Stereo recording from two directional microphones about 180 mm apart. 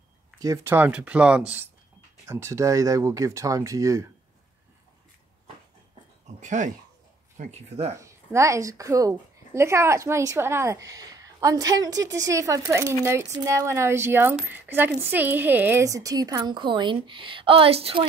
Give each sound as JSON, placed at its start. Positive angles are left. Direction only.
{"t": 0.4, "sound": "a woman's voice", "side_deg": -15}
{"t": 6.4, "sound": "speech", "side_deg": -45}
{"t": 8.0, "sound": "a woman's voice", "side_deg": -15}